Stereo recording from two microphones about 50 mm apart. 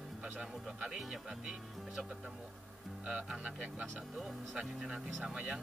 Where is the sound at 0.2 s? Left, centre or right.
Centre.